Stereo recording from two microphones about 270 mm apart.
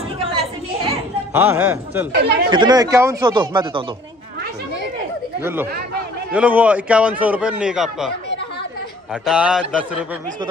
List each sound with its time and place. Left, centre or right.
0.2 s children playing: right
1.3 s speech: centre
5.4 s a man's voice: centre
9.1 s a man's voice: centre